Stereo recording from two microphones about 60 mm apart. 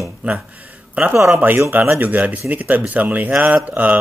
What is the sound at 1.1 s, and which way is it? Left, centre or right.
Speech, right.